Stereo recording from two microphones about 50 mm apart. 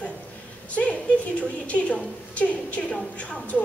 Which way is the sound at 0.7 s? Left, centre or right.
Left.